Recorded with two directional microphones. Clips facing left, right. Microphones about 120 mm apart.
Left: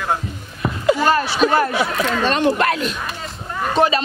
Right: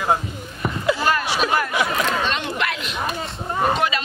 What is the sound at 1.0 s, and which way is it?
Speech, 30° left (ahead or behind).